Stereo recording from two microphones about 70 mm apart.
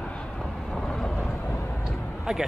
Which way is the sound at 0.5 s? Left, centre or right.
Centre.